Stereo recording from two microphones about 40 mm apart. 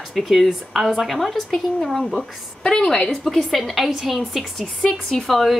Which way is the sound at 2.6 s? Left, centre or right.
Left.